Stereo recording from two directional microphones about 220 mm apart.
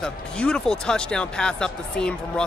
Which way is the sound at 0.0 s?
5° left (ahead or behind).